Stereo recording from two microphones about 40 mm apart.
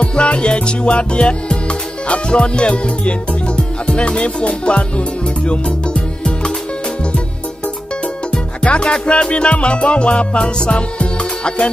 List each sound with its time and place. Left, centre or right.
0.0 s music: left
8.3 s music: left